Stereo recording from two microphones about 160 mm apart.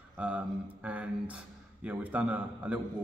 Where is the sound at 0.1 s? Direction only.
10° right (ahead or behind).